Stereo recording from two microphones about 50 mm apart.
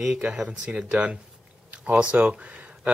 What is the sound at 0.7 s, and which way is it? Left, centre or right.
Speech, centre.